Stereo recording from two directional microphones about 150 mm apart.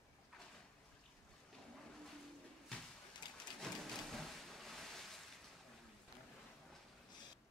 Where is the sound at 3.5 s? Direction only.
Centre (ahead or behind).